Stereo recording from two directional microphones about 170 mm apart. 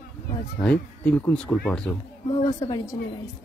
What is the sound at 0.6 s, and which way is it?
Speech, 10° left (ahead or behind).